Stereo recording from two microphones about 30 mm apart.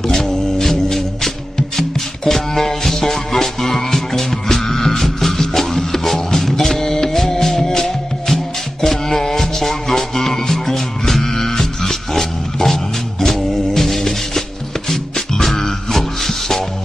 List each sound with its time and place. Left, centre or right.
0.2 s music: centre